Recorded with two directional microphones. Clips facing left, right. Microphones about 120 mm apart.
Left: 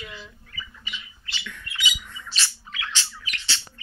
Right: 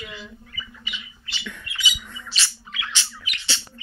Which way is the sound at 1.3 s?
20° right (ahead or behind).